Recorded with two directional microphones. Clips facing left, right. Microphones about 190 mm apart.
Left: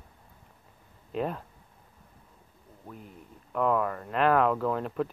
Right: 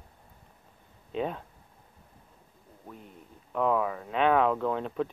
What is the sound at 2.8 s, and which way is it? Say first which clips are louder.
Speech: left 1 dB; centre (ahead or behind).